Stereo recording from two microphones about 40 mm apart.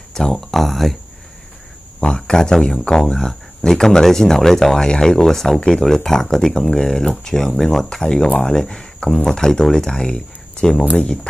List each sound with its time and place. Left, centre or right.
0.1 s a sound: centre
2.0 s speech: left
4.8 s speech: centre
5.6 s speech: left
5.9 s speech: centre